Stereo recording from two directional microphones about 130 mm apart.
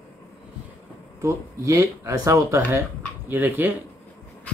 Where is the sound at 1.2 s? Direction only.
25° right (ahead or behind).